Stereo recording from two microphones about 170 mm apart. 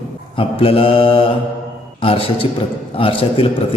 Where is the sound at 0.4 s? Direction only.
35° left (ahead or behind).